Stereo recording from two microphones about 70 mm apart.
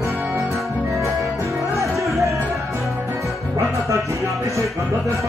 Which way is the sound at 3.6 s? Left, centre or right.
Right.